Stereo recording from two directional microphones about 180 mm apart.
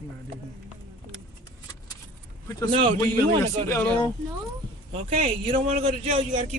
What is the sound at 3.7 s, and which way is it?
Speech, 10° left (ahead or behind).